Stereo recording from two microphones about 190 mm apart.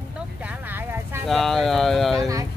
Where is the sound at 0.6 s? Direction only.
10° right (ahead or behind).